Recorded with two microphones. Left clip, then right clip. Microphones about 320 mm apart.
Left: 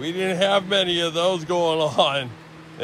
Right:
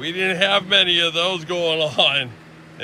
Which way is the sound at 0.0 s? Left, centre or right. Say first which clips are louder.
Right 2 dB; centre.